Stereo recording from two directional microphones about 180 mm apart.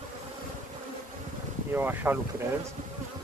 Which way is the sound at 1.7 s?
10° right (ahead or behind).